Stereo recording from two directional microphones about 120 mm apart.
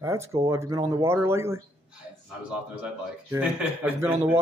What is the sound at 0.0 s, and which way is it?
A man's voice, 25° right (ahead or behind).